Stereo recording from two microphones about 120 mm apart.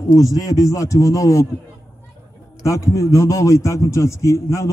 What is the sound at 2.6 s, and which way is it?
A man's voice, 25° left (ahead or behind).